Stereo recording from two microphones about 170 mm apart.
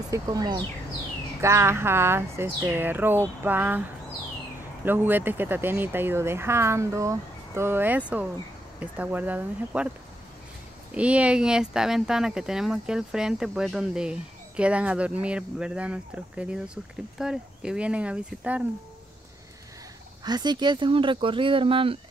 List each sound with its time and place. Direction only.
0.1 s speech: 20° right (ahead or behind)
4.8 s speech: 10° right (ahead or behind)
11.0 s speech: 5° right (ahead or behind)
20.2 s speech: 25° right (ahead or behind)